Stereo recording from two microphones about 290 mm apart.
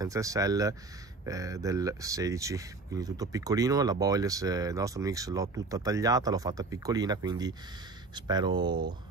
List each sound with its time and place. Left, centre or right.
0.0 s speech: centre